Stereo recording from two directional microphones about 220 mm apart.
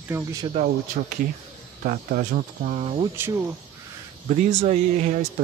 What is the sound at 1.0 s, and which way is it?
Speech, 40° right (ahead or behind).